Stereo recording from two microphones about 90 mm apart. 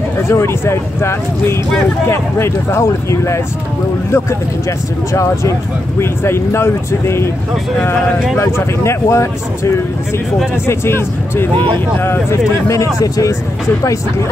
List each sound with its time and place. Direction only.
0.3 s speech: 30° left (ahead or behind)
8.4 s speech: 30° left (ahead or behind)
10.7 s speech: 25° left (ahead or behind)